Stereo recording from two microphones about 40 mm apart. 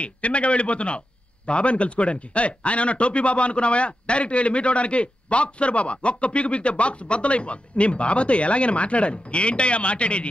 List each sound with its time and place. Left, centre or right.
0.0 s a man's voice: left